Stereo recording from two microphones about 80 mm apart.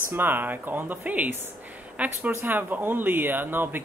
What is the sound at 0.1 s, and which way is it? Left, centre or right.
Speech, right.